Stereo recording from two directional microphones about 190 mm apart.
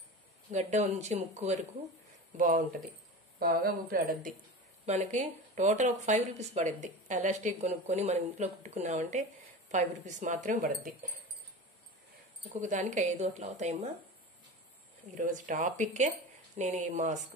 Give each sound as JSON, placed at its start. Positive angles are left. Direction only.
{"t": 0.5, "sound": "a woman's voice", "side_deg": -35}
{"t": 4.8, "sound": "speech", "side_deg": -40}
{"t": 12.5, "sound": "speech", "side_deg": -40}
{"t": 15.1, "sound": "speech", "side_deg": -45}